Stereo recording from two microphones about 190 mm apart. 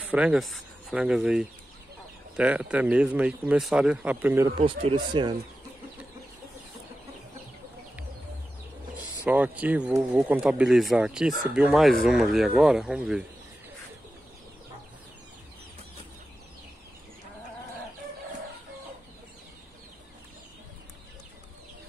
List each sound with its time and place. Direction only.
0.0 s speech: 5° right (ahead or behind)
4.6 s speech: 30° right (ahead or behind)
9.2 s speech: 10° right (ahead or behind)